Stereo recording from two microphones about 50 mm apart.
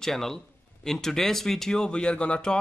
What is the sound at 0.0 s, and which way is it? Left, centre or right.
Speech, centre.